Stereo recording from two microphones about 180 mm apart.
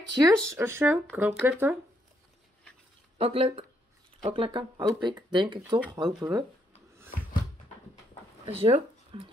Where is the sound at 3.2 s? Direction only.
30° right (ahead or behind).